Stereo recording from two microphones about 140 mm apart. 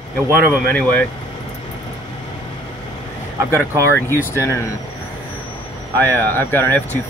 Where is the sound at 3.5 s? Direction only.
15° left (ahead or behind).